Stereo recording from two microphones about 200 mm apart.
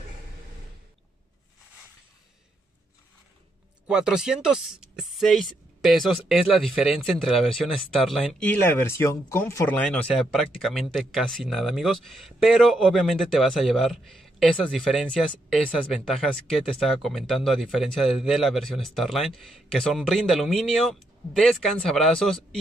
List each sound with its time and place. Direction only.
3.8 s speech: 5° right (ahead or behind)